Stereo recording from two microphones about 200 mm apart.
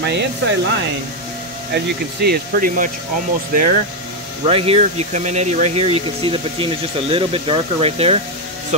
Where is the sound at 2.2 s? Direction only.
50° right (ahead or behind).